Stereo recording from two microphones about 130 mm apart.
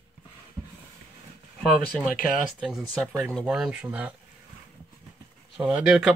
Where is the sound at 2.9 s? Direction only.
10° left (ahead or behind).